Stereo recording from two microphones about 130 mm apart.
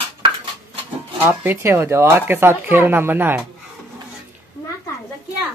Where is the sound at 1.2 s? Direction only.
15° right (ahead or behind).